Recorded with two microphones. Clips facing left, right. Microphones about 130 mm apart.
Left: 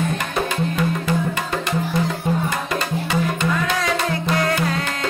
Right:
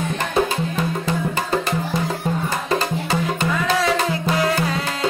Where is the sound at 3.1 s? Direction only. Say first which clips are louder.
Left 2 dB; 35° right (ahead or behind).